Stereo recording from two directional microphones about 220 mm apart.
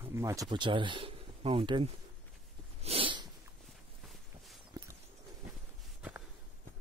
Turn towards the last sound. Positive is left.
turn(degrees=-5)  # may be behind; listen again after turning